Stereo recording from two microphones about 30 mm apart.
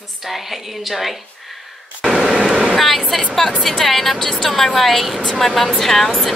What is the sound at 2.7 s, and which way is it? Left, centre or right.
A woman's voice, centre.